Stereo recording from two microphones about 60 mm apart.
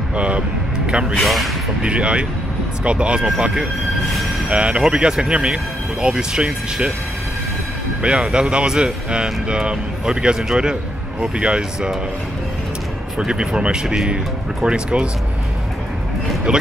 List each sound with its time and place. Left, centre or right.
0.1 s a sound: centre
1.1 s speech: centre
1.8 s speech: centre
8.0 s speech: centre
13.2 s speech: centre